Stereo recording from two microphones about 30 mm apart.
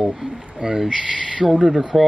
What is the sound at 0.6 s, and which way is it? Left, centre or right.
Speech, right.